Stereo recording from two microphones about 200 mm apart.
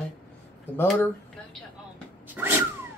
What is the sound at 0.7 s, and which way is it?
Speech, 10° left (ahead or behind).